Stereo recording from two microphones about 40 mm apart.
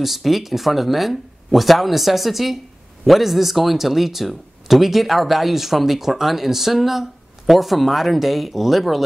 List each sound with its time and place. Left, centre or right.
0.0 s speech: centre